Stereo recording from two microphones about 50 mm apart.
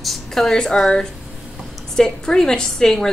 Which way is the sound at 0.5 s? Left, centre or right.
Centre.